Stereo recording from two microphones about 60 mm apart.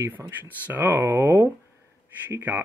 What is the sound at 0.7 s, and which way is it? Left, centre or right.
Speech, right.